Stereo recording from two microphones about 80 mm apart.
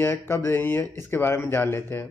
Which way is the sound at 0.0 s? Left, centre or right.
Left.